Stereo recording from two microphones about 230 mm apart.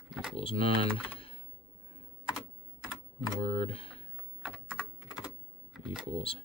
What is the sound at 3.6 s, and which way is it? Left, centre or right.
Speech, left.